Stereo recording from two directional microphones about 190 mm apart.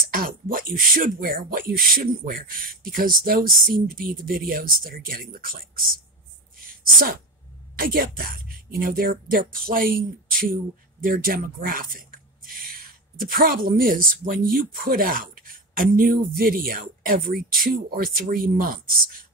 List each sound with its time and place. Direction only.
0.1 s a woman's voice: 50° right (ahead or behind)
7.7 s a woman's voice: 50° right (ahead or behind)